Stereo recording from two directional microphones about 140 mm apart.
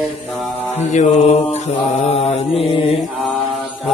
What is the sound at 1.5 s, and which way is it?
Mantra, 50° left (ahead or behind).